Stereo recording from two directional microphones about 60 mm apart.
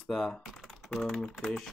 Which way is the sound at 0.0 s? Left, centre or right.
Centre.